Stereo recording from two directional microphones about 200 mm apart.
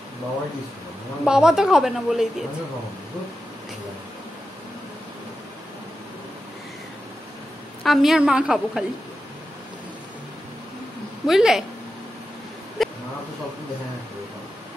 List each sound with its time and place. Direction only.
1.2 s speech: 5° right (ahead or behind)
7.8 s speech: centre (ahead or behind)
11.2 s speech: centre (ahead or behind)
12.8 s a sound: centre (ahead or behind)